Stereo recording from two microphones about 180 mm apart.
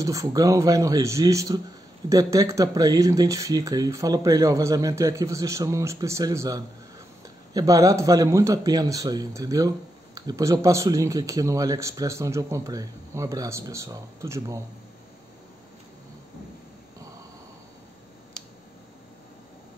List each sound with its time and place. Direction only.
0.0 s a man's voice: 20° right (ahead or behind)